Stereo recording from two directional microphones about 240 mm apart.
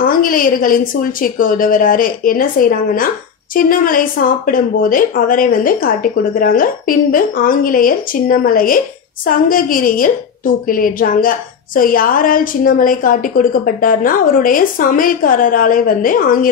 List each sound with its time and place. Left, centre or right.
0.0 s a woman's voice: left